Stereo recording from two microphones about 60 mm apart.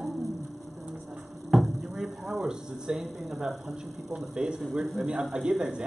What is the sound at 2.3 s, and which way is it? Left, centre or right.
Speech, centre.